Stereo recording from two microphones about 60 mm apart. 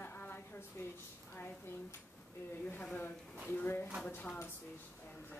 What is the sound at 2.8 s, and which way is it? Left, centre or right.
Speech, left.